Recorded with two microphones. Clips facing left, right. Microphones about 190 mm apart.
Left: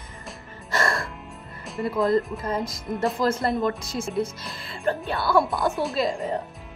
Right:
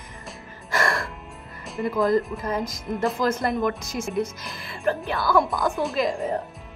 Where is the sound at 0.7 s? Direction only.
25° left (ahead or behind).